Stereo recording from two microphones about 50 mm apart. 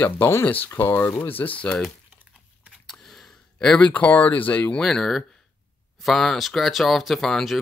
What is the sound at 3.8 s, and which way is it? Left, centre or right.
Speech, left.